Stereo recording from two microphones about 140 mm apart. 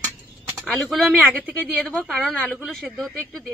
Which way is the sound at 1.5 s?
5° left (ahead or behind).